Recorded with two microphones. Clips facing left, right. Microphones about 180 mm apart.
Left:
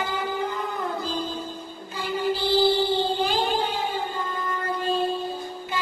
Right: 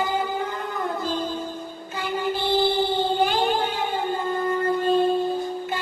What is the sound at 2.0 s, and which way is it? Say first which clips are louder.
Music: even; 60° right (ahead or behind).